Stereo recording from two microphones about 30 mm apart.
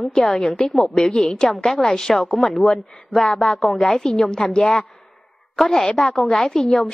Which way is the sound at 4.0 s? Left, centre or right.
Left.